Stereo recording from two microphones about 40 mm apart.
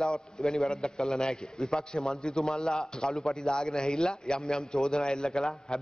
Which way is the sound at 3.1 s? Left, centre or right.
Centre.